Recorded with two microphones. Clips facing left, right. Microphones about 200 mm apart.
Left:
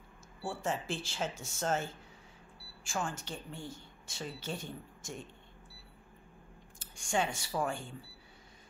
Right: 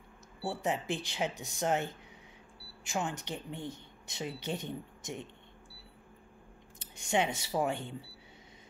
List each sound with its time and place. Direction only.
0.5 s speech: 20° right (ahead or behind)
6.8 s speech: 20° right (ahead or behind)